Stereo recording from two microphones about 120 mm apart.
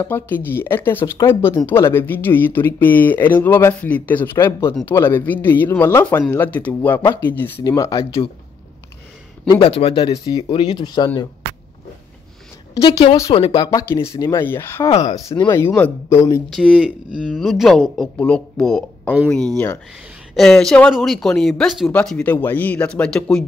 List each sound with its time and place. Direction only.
0.0 s speech: 15° left (ahead or behind)
7.6 s speech: 30° left (ahead or behind)
8.0 s speech: 50° left (ahead or behind)
9.6 s speech: 50° left (ahead or behind)
13.3 s speech: 45° left (ahead or behind)
14.3 s speech: 20° left (ahead or behind)
14.9 s speech: 65° left (ahead or behind)
15.5 s speech: 20° left (ahead or behind)
16.5 s speech: centre (ahead or behind)
20.3 s speech: 5° left (ahead or behind)